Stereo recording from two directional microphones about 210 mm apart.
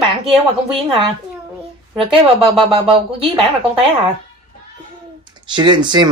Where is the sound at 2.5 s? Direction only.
25° right (ahead or behind).